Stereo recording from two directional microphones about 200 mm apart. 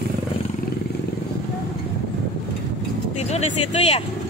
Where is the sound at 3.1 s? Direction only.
35° left (ahead or behind).